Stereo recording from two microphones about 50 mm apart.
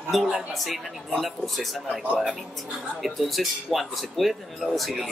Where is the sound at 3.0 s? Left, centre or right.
Centre.